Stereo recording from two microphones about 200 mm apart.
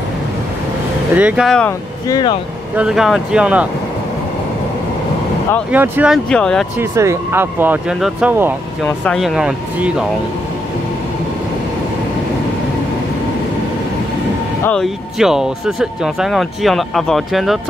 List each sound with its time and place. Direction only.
1.1 s speech: 5° right (ahead or behind)
2.0 s speech: 20° left (ahead or behind)
2.7 s speech: 5° right (ahead or behind)
5.7 s speech: 10° right (ahead or behind)
6.8 s speech: 15° right (ahead or behind)
8.8 s speech: 5° left (ahead or behind)
14.6 s speech: 5° left (ahead or behind)